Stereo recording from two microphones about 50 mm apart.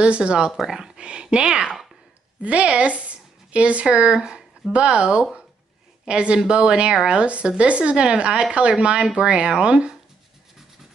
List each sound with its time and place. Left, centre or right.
0.0 s speech: centre
0.5 s speech: centre
2.4 s a woman's voice: right